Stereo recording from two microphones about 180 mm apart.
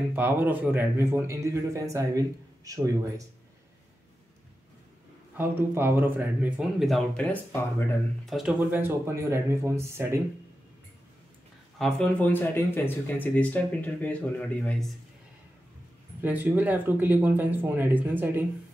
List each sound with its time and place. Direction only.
0.1 s a man's voice: 10° right (ahead or behind)
5.4 s speech: 10° right (ahead or behind); by 7.9 s 10° left (ahead or behind)
8.3 s a man's voice: 5° right (ahead or behind)
11.8 s speech: 5° left (ahead or behind)
16.2 s a man's voice: 10° right (ahead or behind)